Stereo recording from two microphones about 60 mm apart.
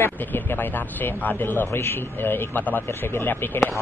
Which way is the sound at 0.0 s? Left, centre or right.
Left.